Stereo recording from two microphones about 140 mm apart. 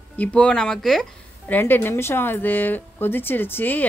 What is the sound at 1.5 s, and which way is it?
Speech, 15° left (ahead or behind).